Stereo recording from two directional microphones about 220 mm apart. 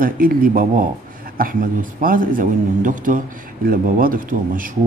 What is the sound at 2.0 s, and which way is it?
Speech, 40° right (ahead or behind).